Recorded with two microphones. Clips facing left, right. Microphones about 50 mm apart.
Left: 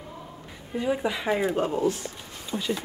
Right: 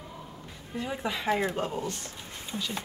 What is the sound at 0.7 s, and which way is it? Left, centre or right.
Speech, centre.